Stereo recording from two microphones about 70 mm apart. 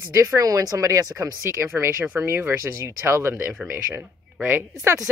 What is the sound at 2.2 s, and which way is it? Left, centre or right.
Speech, right.